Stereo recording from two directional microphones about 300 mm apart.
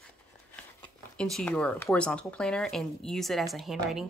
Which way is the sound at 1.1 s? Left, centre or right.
Centre.